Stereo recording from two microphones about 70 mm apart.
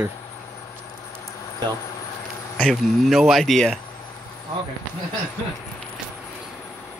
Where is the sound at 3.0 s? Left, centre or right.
Centre.